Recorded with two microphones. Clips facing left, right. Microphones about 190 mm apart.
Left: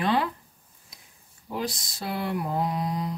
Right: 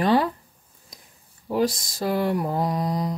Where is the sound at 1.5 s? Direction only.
45° right (ahead or behind).